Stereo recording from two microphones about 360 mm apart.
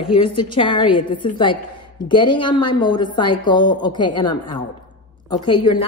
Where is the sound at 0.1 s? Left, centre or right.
Centre.